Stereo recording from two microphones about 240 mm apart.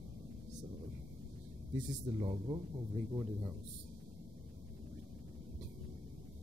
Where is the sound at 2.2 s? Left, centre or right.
Centre.